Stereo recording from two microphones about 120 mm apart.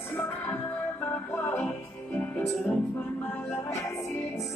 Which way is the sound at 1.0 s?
15° left (ahead or behind).